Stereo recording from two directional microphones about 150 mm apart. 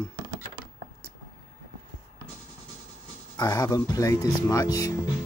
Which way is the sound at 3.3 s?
25° left (ahead or behind).